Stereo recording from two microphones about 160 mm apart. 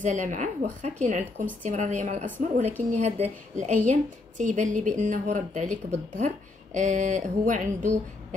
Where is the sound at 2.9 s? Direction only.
40° right (ahead or behind).